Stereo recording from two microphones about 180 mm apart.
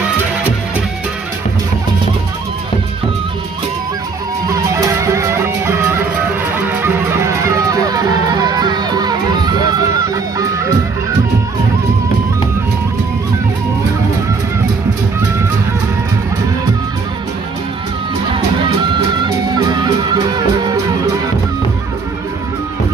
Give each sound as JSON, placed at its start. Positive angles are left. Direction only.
{"t": 4.5, "sound": "music", "side_deg": -15}
{"t": 19.5, "sound": "music", "side_deg": -25}